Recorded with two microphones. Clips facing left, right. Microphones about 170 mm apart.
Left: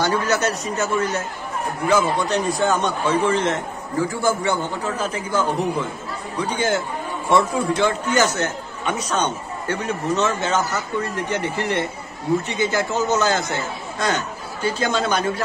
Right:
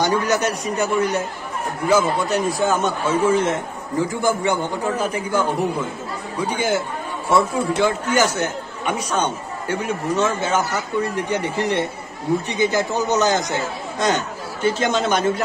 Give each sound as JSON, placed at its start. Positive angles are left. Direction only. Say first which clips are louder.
{"t": 0.0, "sound": "speech", "louder": "right 1 dB", "side_deg": -15}